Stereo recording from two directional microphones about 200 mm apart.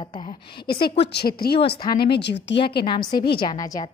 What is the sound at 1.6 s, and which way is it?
Speech, 25° left (ahead or behind).